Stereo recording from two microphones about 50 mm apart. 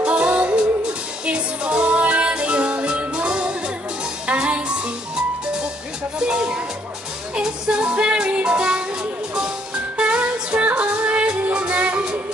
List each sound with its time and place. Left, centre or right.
0.0 s music: right
6.1 s music: centre
9.9 s music: right